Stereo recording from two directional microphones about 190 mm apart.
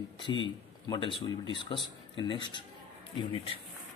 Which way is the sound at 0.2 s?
25° left (ahead or behind).